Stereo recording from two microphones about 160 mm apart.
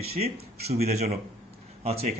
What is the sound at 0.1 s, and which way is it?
Speech, 40° right (ahead or behind).